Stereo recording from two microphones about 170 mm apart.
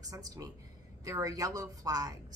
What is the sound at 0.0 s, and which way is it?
A woman's voice, 20° right (ahead or behind).